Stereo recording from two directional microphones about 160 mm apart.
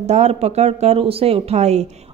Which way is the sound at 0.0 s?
45° right (ahead or behind).